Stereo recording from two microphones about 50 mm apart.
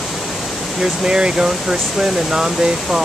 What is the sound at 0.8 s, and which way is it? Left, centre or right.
Speech, centre.